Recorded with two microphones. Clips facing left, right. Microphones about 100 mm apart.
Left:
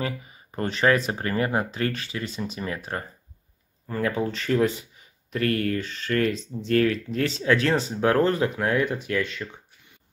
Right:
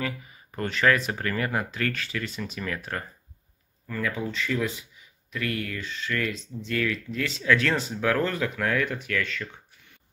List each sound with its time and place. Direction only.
0.0 s speech: 25° left (ahead or behind)
4.2 s speech: 45° left (ahead or behind); by 9.5 s 25° left (ahead or behind)